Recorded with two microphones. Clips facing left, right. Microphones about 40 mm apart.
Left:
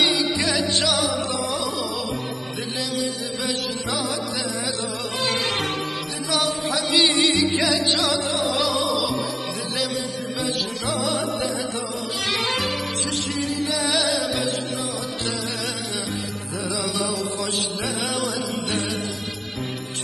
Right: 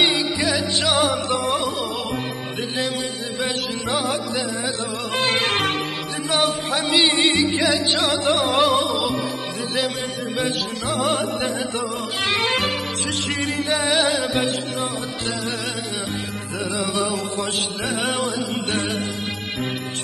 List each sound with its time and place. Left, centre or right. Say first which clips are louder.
0.4 s music: right 1 dB; centre
0.9 s music: right 4 dB; right
3.3 s music: right 4 dB; right
10.3 s music: right 2 dB; right
16.5 s music: right 3 dB; right